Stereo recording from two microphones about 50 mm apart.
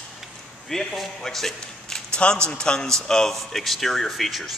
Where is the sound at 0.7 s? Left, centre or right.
Centre.